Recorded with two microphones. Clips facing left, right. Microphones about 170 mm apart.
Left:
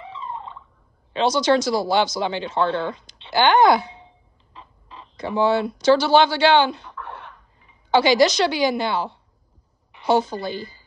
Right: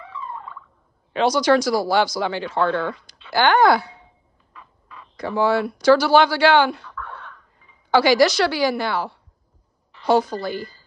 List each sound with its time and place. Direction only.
0.0 s fowl: 20° left (ahead or behind)
1.1 s speech: 25° left (ahead or behind)
4.6 s chicken: 25° left (ahead or behind)
7.9 s speech: 20° left (ahead or behind)